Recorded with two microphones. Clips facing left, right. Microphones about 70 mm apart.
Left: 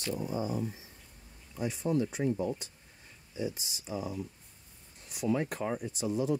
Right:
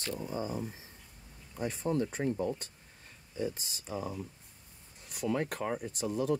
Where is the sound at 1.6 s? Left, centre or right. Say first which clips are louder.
Left 1 dB; right.